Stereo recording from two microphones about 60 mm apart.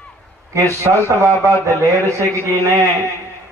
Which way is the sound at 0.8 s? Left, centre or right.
Right.